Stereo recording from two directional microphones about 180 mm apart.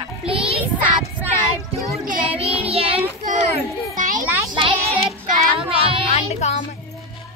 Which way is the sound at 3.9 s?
45° right (ahead or behind).